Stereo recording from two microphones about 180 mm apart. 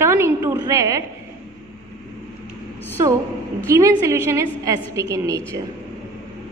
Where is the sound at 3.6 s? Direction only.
15° right (ahead or behind).